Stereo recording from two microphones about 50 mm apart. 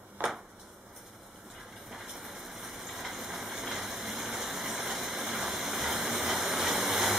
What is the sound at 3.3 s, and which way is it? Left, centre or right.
Vehicle, centre.